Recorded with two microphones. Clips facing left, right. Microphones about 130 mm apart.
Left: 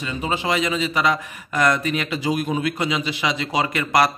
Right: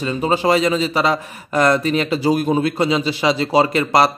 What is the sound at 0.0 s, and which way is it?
A man's voice, 35° right (ahead or behind).